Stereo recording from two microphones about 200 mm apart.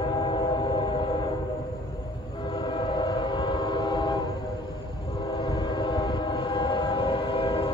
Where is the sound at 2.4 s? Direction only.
25° left (ahead or behind).